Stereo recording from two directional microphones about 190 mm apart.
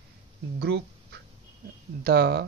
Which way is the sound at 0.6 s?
65° right (ahead or behind).